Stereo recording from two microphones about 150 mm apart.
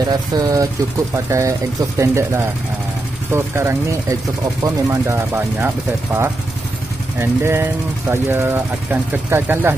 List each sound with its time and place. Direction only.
0.0 s speech: 25° right (ahead or behind)
7.2 s speech: 15° right (ahead or behind)